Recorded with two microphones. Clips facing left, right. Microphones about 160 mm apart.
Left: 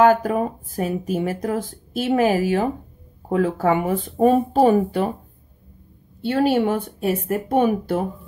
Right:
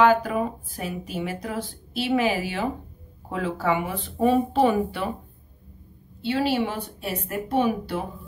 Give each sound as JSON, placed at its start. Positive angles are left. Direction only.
{"t": 0.0, "sound": "speech", "side_deg": 45}
{"t": 6.2, "sound": "speech", "side_deg": 50}